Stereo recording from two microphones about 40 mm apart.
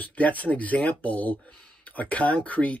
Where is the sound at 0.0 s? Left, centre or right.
Left.